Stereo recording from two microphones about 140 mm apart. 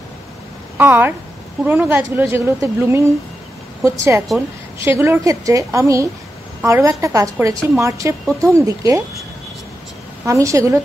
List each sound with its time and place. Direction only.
0.7 s a woman's voice: 15° right (ahead or behind)
10.2 s a woman's voice: 20° right (ahead or behind)